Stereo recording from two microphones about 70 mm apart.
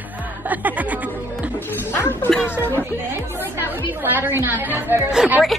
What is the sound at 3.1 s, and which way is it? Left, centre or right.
Speech, right.